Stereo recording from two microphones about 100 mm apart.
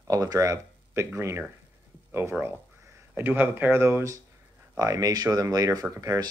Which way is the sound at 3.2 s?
20° right (ahead or behind).